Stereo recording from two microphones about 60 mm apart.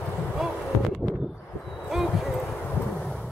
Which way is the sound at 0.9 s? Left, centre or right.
Centre.